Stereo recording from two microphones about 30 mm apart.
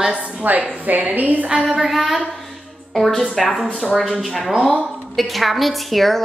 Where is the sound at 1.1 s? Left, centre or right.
Right.